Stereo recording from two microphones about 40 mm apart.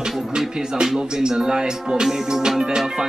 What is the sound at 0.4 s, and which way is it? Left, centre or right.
Speech, centre.